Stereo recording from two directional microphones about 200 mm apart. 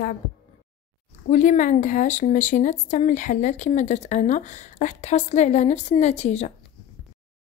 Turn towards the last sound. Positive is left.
turn(degrees=35)  # may be behind; listen again after turning